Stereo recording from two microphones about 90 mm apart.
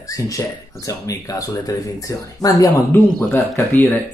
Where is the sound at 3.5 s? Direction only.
20° left (ahead or behind).